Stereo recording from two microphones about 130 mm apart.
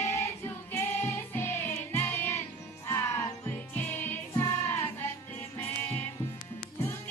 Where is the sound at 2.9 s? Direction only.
20° left (ahead or behind).